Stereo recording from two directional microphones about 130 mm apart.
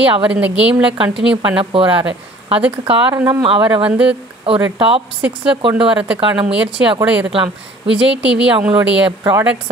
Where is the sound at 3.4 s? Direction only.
40° right (ahead or behind).